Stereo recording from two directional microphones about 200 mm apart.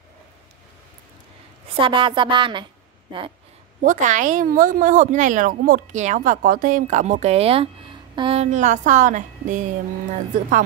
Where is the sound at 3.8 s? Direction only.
40° right (ahead or behind).